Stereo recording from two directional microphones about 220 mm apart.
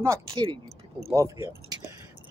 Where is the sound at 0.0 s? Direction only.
20° right (ahead or behind).